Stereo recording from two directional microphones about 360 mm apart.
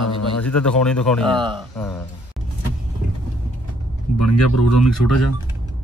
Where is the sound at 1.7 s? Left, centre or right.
Centre.